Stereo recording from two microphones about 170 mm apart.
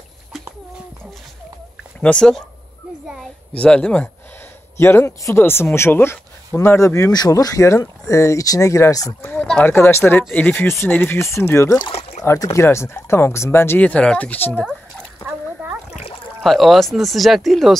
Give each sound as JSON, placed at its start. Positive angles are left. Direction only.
{"t": 2.0, "sound": "speech", "side_deg": 5}
{"t": 3.5, "sound": "speech", "side_deg": 5}
{"t": 9.3, "sound": "speech", "side_deg": 5}
{"t": 11.9, "sound": "boat", "side_deg": 40}
{"t": 12.2, "sound": "speech", "side_deg": 20}
{"t": 15.2, "sound": "splash", "side_deg": -10}
{"t": 15.9, "sound": "splash", "side_deg": 40}
{"t": 16.4, "sound": "speech", "side_deg": 0}